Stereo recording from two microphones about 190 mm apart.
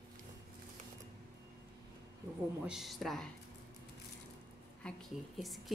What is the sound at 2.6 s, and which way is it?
Speech, centre (ahead or behind).